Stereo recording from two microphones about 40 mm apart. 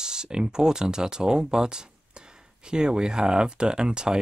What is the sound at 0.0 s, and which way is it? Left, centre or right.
Speech, centre.